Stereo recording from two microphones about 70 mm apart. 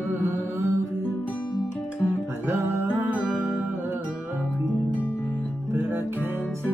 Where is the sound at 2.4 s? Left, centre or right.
Right.